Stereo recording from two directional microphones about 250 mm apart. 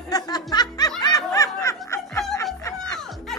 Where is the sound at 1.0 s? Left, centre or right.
Centre.